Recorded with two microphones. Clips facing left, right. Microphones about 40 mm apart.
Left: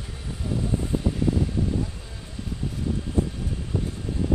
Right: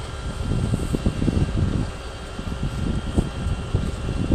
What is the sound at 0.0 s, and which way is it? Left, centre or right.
Vehicle, right.